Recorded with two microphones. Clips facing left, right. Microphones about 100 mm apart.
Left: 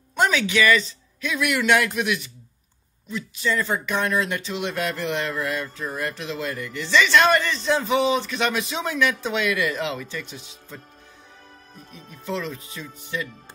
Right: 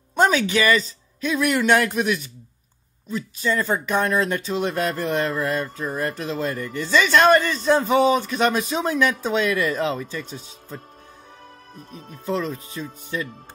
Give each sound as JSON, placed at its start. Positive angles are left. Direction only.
{"t": 0.1, "sound": "speech", "side_deg": -40}
{"t": 11.9, "sound": "speech", "side_deg": -40}